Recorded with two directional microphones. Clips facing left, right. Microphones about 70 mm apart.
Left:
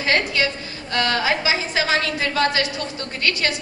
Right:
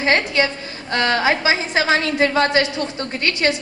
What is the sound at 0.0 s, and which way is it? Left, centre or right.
A woman's voice, right.